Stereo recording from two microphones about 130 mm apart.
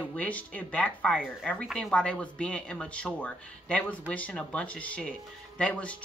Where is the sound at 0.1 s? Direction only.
10° left (ahead or behind).